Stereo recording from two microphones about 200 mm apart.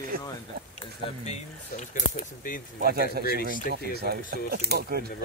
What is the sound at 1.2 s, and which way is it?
Speech, 35° left (ahead or behind).